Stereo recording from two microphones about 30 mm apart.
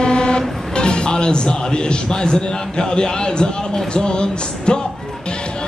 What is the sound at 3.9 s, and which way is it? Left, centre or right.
Music, left.